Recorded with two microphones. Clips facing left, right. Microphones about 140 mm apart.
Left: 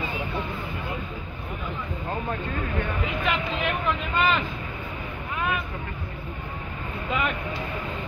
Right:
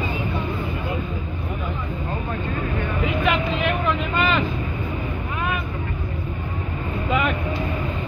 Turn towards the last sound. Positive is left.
turn(degrees=-90)